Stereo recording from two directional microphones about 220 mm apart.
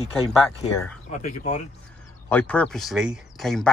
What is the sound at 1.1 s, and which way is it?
Speech, 35° left (ahead or behind).